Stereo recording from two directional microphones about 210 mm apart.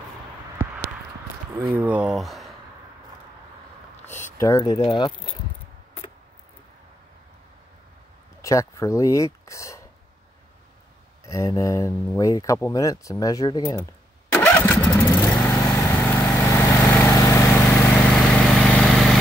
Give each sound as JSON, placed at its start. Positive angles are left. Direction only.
{"t": 1.5, "sound": "speech", "side_deg": -10}
{"t": 4.1, "sound": "speech", "side_deg": 15}
{"t": 8.4, "sound": "speech", "side_deg": 15}
{"t": 11.2, "sound": "speech", "side_deg": 15}
{"t": 14.3, "sound": "engine starting", "side_deg": 10}
{"t": 15.7, "sound": "vehicle", "side_deg": 10}